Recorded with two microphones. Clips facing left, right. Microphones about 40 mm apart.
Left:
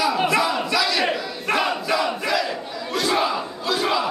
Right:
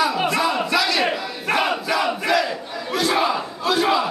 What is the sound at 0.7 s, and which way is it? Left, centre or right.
Battle cry, right.